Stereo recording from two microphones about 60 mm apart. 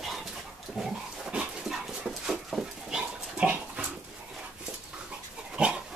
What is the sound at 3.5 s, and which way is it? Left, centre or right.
Dog, right.